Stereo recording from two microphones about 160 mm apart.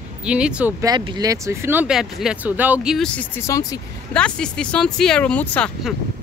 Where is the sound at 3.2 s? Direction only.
20° left (ahead or behind).